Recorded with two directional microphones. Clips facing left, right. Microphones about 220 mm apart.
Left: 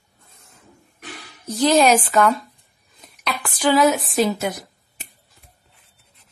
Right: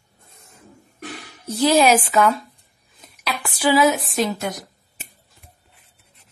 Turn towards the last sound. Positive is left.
turn(degrees=5)  # may be behind; listen again after turning